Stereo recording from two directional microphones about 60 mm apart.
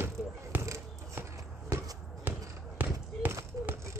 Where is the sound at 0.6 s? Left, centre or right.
Right.